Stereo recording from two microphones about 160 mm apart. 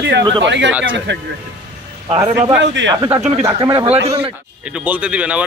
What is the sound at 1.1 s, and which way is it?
Speech, 90° right.